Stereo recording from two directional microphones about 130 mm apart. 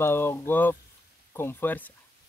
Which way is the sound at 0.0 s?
20° left (ahead or behind).